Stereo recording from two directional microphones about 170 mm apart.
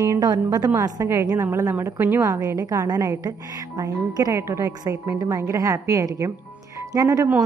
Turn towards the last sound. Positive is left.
turn(degrees=-15)  # may be behind; listen again after turning